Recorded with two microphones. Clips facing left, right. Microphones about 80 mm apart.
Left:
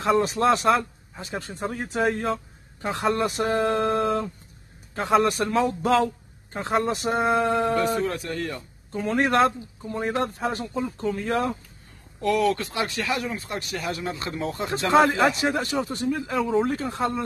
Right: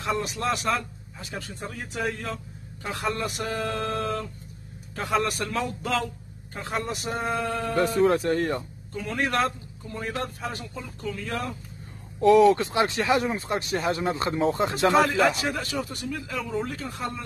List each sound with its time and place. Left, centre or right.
0.0 s speech: left
4.0 s a man's voice: left
8.0 s speech: right
8.9 s a man's voice: left
12.2 s speech: right
14.9 s a man's voice: left